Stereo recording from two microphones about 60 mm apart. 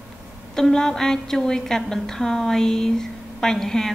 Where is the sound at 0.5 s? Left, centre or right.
Centre.